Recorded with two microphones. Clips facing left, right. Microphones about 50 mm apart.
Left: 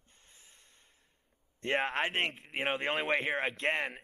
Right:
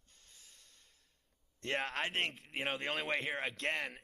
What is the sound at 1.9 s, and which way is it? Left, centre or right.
Speech, left.